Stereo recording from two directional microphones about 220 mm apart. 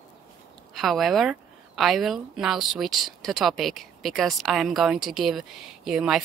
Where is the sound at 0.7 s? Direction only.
Centre (ahead or behind).